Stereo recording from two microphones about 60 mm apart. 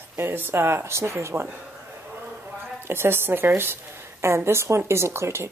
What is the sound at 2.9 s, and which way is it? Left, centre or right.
Speech, right.